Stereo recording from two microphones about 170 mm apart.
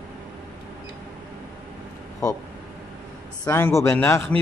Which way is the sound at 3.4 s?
15° left (ahead or behind).